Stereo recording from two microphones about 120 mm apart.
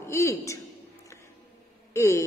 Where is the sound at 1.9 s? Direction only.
25° left (ahead or behind).